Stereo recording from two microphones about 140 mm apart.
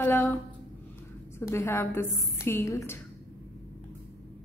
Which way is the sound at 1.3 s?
15° left (ahead or behind).